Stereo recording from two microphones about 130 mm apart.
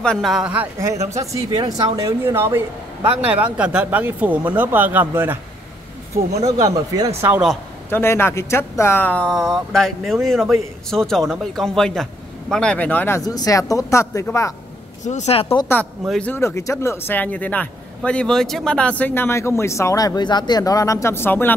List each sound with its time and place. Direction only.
0.0 s a man's voice: 5° left (ahead or behind)
0.9 s speech: 55° right (ahead or behind)
2.0 s a man's voice: 20° right (ahead or behind)
6.1 s a man's voice: 25° right (ahead or behind)
7.2 s speech: 15° right (ahead or behind)
7.9 s a man's voice: 15° left (ahead or behind)
13.2 s speech: 30° left (ahead or behind)
15.0 s speech: 60° left (ahead or behind)
16.1 s speech: 10° left (ahead or behind)